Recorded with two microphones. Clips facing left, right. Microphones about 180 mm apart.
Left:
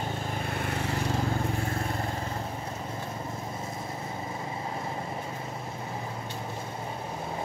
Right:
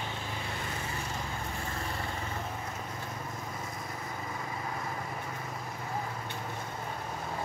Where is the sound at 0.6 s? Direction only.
65° left (ahead or behind).